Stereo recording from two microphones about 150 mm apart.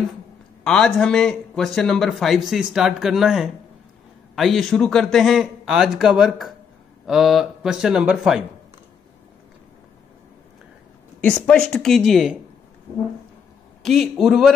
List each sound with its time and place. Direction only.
0.7 s speech: 5° left (ahead or behind)
11.2 s speech: 5° left (ahead or behind)
13.8 s speech: centre (ahead or behind)